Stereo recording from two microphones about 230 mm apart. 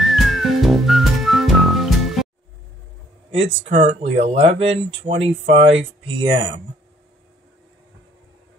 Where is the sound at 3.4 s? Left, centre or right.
Right.